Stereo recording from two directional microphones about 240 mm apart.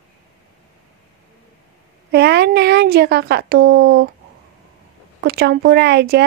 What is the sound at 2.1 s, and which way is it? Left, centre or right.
Speech, right.